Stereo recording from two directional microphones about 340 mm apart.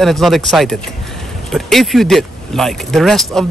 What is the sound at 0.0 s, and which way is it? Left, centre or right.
Speech, centre.